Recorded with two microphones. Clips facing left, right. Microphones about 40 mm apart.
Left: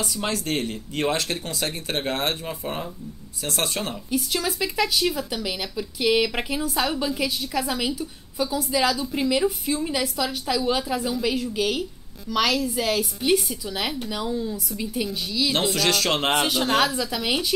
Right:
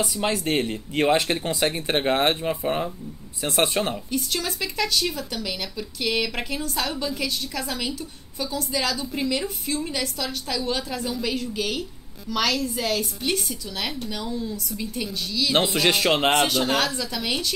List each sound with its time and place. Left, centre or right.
0.0 s speech: centre
4.1 s speech: centre
15.7 s speech: right
16.3 s speech: centre